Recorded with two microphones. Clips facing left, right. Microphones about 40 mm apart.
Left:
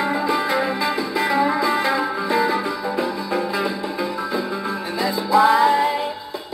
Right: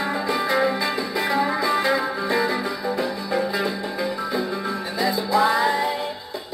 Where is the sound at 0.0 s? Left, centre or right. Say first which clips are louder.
Left 3 dB; centre.